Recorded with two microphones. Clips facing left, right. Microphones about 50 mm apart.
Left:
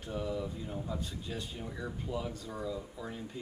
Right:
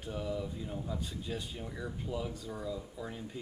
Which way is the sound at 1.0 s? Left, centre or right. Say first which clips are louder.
Right 1 dB; centre.